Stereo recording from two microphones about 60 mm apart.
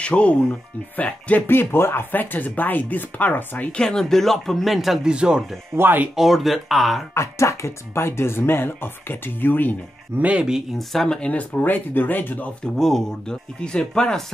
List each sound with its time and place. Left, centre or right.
0.0 s speech: centre
1.5 s speech: left
3.7 s speech: centre
5.0 s speech: centre
5.8 s speech: right
6.1 s speech: centre
7.2 s speech: left
10.2 s speech: centre
10.8 s speech: centre
11.1 s speech: left
12.7 s speech: centre